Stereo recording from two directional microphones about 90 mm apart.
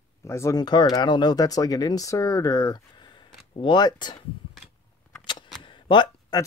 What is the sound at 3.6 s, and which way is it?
Speech, 55° left (ahead or behind).